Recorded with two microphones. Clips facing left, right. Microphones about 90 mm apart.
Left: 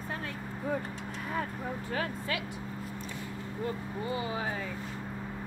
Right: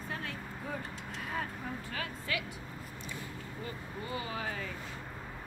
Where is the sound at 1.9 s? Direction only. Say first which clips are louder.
Left 4 dB; 35° left (ahead or behind).